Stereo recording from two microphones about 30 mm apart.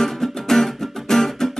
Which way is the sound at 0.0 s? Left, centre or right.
Centre.